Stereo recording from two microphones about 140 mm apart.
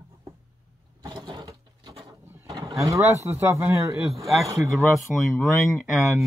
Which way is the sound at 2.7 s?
20° right (ahead or behind).